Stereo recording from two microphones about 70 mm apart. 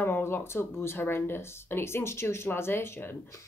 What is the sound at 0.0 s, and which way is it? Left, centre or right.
Speech, left.